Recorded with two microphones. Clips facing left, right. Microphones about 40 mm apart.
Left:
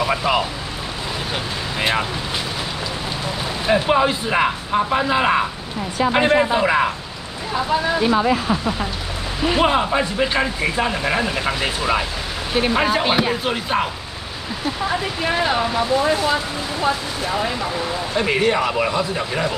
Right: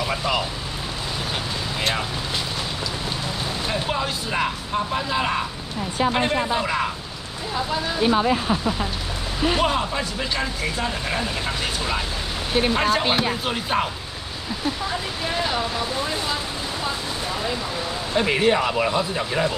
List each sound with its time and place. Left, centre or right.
0.0 s speech: centre
1.8 s speech: left
3.6 s speech: left
9.5 s speech: left
14.9 s speech: left
18.1 s speech: centre